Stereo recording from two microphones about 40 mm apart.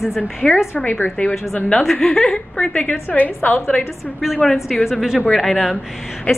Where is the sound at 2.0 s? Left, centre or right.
Centre.